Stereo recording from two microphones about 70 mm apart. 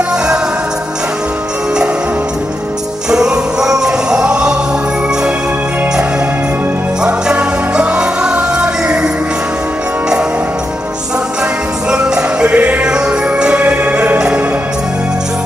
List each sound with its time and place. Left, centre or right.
3.1 s music: centre
7.0 s music: centre
11.9 s music: centre
12.8 s music: centre